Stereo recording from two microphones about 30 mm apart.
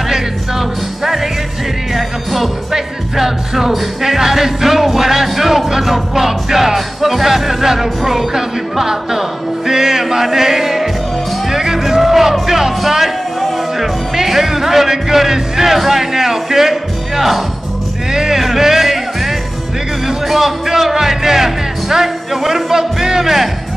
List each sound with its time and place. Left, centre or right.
0.1 s music: centre
13.7 s speech: centre
18.1 s music: centre
20.2 s speech: centre